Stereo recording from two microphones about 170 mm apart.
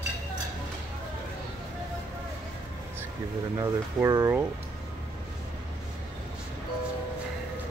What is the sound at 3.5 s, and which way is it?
Speech, 20° right (ahead or behind).